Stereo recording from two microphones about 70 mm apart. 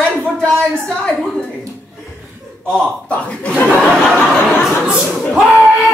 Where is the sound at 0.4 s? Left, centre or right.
Centre.